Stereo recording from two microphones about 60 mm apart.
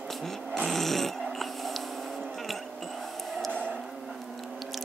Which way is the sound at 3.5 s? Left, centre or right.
Right.